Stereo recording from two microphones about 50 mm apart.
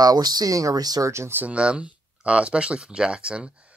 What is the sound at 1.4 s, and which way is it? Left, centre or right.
Speech, right.